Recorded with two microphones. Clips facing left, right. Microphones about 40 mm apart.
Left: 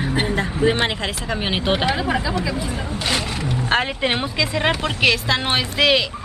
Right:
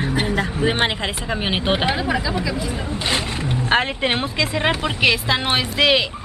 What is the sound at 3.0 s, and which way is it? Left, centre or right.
Speech, centre.